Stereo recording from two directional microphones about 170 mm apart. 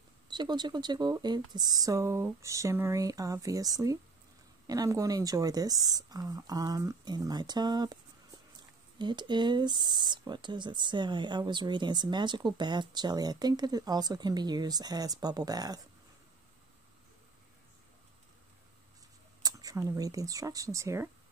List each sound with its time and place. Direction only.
0.3 s speech: 25° right (ahead or behind)
19.4 s speech: 20° right (ahead or behind)